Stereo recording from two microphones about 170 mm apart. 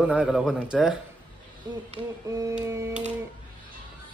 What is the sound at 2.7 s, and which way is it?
Speech, 15° right (ahead or behind).